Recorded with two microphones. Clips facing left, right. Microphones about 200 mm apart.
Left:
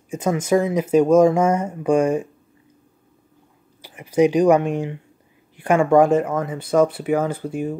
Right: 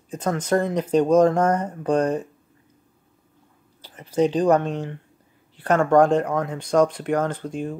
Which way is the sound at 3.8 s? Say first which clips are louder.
Left 4 dB; 10° left (ahead or behind).